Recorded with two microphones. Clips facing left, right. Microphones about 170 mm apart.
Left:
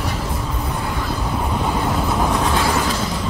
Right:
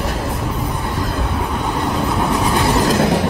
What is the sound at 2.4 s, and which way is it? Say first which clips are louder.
Vehicle: right 2 dB; 15° right (ahead or behind).